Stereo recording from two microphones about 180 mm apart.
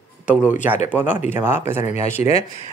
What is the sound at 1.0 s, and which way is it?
Speech, 45° left (ahead or behind).